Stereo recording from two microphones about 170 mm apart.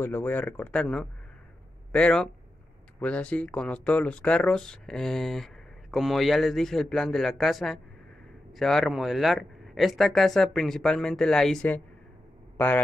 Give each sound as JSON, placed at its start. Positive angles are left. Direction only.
{"t": 0.0, "sound": "a man's voice", "side_deg": 10}